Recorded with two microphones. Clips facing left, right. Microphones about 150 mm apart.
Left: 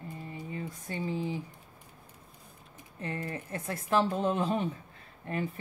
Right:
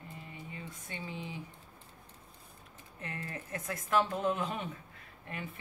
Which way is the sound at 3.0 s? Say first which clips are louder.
Left 6 dB; 30° left (ahead or behind).